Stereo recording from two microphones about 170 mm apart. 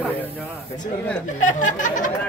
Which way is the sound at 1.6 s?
50° left (ahead or behind).